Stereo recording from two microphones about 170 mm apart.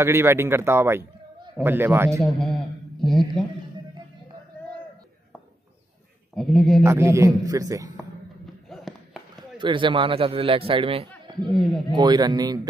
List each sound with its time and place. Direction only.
0.0 s speech: 15° right (ahead or behind)
2.2 s a man's voice: centre (ahead or behind)
6.3 s a man's voice: centre (ahead or behind)
6.8 s a man's voice: 15° right (ahead or behind)
8.6 s a sound: centre (ahead or behind)
9.6 s a man's voice: 30° right (ahead or behind)
11.5 s a man's voice: centre (ahead or behind)
11.9 s a man's voice: 25° right (ahead or behind)